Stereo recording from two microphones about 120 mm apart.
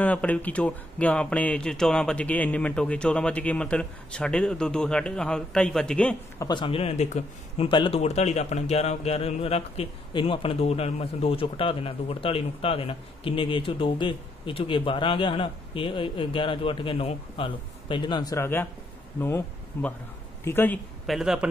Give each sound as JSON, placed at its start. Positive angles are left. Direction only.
{"t": 0.0, "sound": "speech", "side_deg": 10}
{"t": 6.4, "sound": "speech", "side_deg": 40}
{"t": 6.8, "sound": "speech", "side_deg": 70}
{"t": 7.6, "sound": "speech", "side_deg": 45}
{"t": 8.0, "sound": "speech", "side_deg": 65}
{"t": 18.3, "sound": "speech", "side_deg": 20}
{"t": 21.1, "sound": "speech", "side_deg": -5}